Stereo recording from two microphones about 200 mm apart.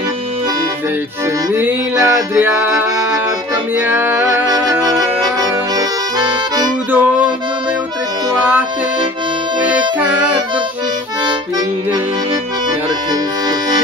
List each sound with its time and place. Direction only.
1.5 s music: 10° right (ahead or behind)
3.8 s music: 10° right (ahead or behind)
4.5 s music: 20° right (ahead or behind)
5.4 s accordion: 20° right (ahead or behind)
6.9 s music: 10° right (ahead or behind)
11.2 s music: 20° right (ahead or behind)
13.1 s accordion: 20° right (ahead or behind)